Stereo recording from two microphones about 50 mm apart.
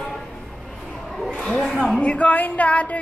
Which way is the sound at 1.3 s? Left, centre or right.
Centre.